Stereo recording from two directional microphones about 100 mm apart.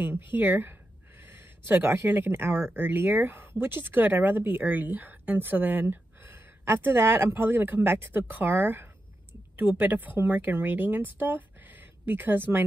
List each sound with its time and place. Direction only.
0.3 s a woman's voice: 20° right (ahead or behind)